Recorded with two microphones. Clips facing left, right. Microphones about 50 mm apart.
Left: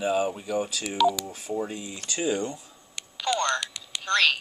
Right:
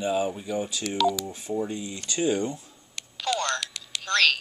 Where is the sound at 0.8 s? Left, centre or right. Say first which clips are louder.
Left 1 dB; centre.